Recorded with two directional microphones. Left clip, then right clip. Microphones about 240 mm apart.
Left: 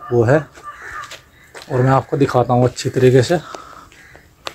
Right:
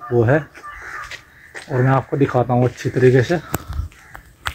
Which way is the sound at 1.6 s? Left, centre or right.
Centre.